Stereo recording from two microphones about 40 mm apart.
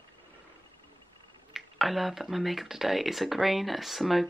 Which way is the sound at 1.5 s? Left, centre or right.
Centre.